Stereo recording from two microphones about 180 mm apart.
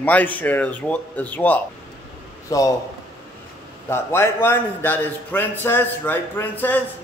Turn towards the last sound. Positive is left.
turn(degrees=10)  # may be behind; listen again after turning